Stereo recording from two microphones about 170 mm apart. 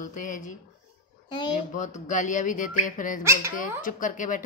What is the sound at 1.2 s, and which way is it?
Speech, 25° left (ahead or behind).